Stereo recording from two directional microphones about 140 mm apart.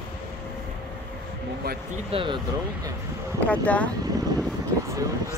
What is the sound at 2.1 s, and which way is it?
Speech, 35° right (ahead or behind).